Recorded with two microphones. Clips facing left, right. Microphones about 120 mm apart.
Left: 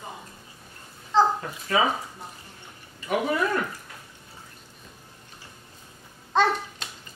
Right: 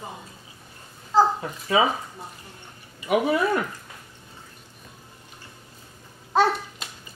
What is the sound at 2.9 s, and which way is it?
Speech, 10° right (ahead or behind).